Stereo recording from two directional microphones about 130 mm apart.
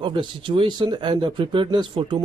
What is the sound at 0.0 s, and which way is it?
Speech, 40° right (ahead or behind).